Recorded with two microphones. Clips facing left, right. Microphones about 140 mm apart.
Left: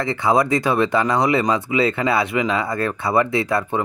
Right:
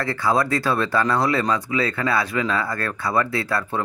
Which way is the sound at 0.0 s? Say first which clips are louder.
Left 3 dB; 20° left (ahead or behind).